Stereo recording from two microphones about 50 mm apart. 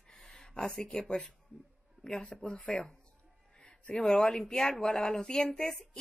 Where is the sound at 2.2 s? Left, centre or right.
Centre.